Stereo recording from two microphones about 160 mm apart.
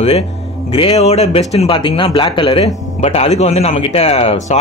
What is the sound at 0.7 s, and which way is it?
A man's voice, 40° left (ahead or behind).